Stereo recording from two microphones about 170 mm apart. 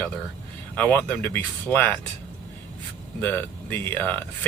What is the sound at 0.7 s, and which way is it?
Speech, 10° left (ahead or behind).